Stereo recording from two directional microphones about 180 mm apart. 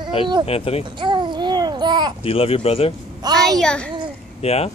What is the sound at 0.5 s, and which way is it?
Speech, 35° left (ahead or behind).